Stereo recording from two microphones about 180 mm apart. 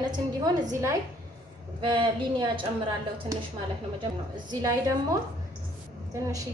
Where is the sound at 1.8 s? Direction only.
25° right (ahead or behind).